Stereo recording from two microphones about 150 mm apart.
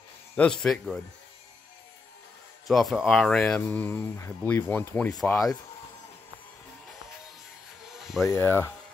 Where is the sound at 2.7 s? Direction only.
Centre (ahead or behind).